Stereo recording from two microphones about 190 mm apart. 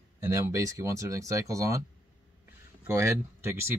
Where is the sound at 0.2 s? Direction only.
15° right (ahead or behind).